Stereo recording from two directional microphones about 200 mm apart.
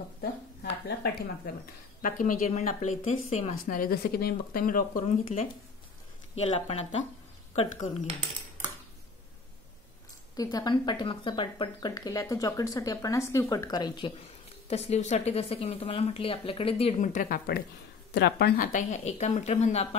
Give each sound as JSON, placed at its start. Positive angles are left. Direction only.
{"t": 0.8, "sound": "a woman's voice", "side_deg": 50}
{"t": 10.3, "sound": "speech", "side_deg": 20}
{"t": 14.7, "sound": "a woman's voice", "side_deg": 30}